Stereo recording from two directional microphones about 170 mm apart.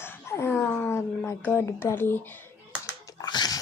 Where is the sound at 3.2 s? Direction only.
25° left (ahead or behind).